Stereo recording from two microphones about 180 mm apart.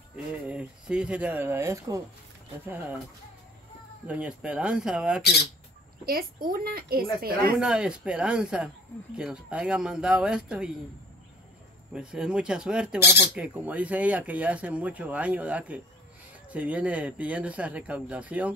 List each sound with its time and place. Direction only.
0.1 s speech: 5° right (ahead or behind)
4.1 s speech: 5° right (ahead or behind)
6.0 s a woman's voice: 55° right (ahead or behind)
7.5 s speech: 5° right (ahead or behind)
11.9 s speech: 5° right (ahead or behind)